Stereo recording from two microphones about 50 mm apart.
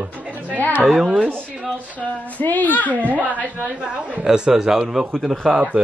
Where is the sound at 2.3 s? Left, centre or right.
Left.